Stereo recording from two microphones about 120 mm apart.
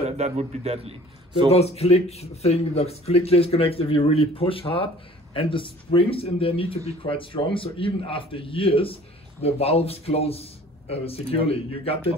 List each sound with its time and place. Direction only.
0.0 s a man's voice: 70° right (ahead or behind)
1.5 s a man's voice: 60° left (ahead or behind)